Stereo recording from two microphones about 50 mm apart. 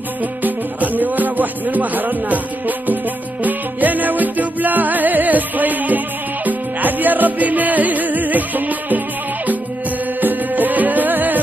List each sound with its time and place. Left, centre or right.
0.4 s music: right
10.2 s music: right